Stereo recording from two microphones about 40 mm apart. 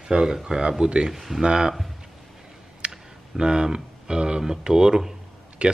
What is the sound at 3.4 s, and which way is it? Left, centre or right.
Speech, right.